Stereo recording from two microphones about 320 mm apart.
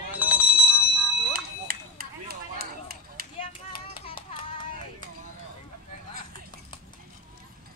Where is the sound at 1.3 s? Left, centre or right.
Right.